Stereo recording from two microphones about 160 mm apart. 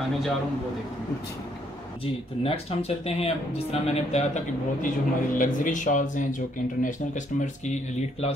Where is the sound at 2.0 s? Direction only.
35° left (ahead or behind); by 7.2 s 55° left (ahead or behind).